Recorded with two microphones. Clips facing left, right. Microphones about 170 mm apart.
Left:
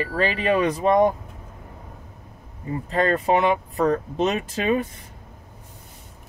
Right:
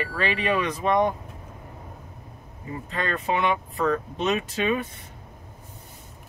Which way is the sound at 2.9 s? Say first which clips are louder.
Left 7 dB; 40° left (ahead or behind).